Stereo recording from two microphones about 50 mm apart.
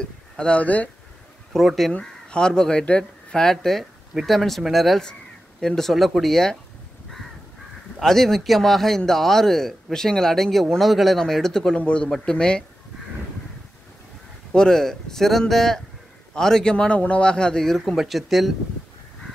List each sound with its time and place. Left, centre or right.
0.0 s a sound: centre
0.6 s speech: left
1.5 s speech: centre
2.0 s speech: centre
8.0 s speech: centre
11.7 s speech: left
14.5 s speech: centre
16.7 s speech: left; by 18.5 s centre